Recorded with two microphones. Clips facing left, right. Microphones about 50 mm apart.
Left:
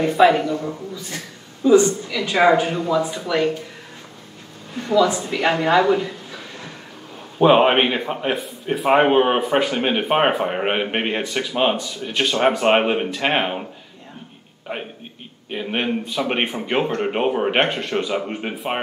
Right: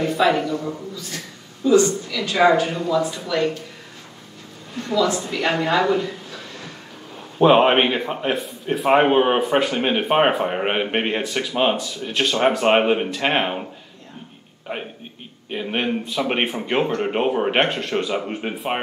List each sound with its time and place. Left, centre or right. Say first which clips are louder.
0.2 s a man's voice: left 5 dB; centre
0.9 s a woman's voice: left 1 dB; left
4.7 s a man's voice: left 3 dB; centre
14.7 s a man's voice: even; centre